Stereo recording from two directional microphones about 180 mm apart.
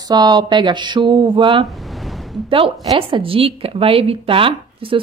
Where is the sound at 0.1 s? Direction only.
25° right (ahead or behind).